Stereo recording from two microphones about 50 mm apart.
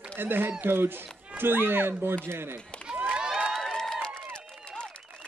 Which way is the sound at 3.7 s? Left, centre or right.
Centre.